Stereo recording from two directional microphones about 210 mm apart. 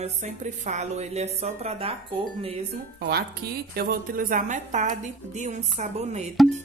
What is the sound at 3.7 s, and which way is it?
Speech, 45° right (ahead or behind).